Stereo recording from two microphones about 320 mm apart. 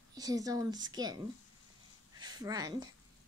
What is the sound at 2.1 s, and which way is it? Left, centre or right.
Speech, centre.